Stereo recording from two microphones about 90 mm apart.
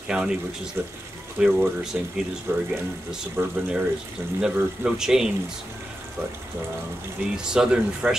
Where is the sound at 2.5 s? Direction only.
20° right (ahead or behind).